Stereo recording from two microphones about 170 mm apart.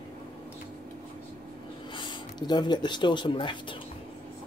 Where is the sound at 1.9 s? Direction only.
25° left (ahead or behind).